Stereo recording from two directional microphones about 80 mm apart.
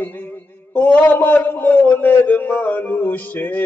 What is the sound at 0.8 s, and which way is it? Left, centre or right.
A man's voice, left.